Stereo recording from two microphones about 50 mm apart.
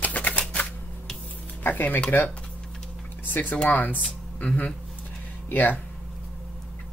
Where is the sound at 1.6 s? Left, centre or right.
Left.